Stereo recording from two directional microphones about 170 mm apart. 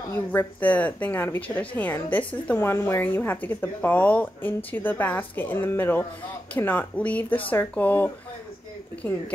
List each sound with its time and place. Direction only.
0.1 s speech: 10° left (ahead or behind)